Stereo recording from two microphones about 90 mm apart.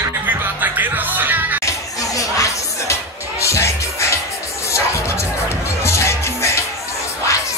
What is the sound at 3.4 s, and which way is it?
Music, 30° left (ahead or behind).